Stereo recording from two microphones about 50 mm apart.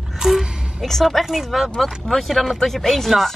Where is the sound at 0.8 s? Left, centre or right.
Centre.